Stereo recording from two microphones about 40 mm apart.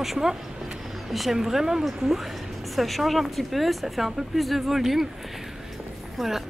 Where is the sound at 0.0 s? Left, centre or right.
Centre.